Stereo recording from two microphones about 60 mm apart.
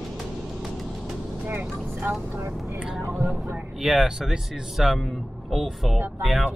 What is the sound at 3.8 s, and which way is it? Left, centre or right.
Speech, centre.